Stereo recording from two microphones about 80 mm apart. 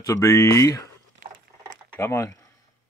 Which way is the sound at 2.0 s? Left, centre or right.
Left.